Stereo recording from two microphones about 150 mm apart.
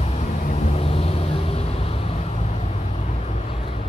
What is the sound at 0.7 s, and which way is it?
Vehicle, 40° left (ahead or behind).